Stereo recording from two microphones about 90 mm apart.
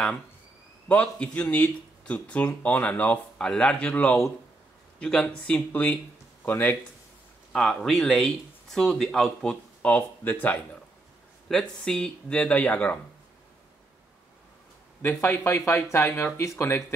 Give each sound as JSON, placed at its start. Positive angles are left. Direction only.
{"t": 0.8, "sound": "speech", "side_deg": 15}
{"t": 7.5, "sound": "speech", "side_deg": 5}
{"t": 11.5, "sound": "speech", "side_deg": 5}
{"t": 15.0, "sound": "speech", "side_deg": 20}